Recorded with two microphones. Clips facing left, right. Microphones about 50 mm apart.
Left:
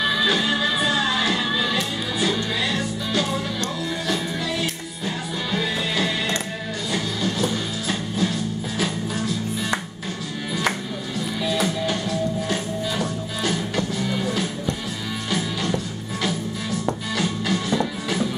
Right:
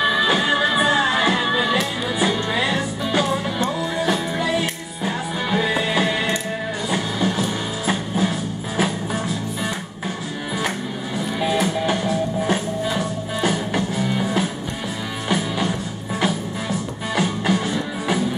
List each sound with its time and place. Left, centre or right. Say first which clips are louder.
0.0 s music: right 3 dB; right
11.4 s music: right 3 dB; right